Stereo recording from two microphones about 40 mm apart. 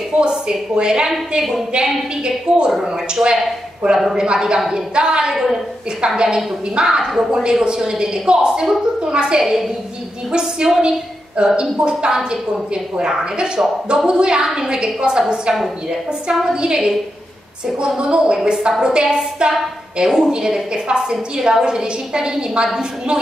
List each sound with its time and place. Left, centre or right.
0.2 s a woman's voice: right
5.3 s a woman's voice: centre
5.9 s a woman's voice: centre